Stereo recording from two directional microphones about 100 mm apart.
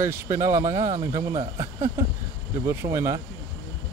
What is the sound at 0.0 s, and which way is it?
Speech, 25° right (ahead or behind).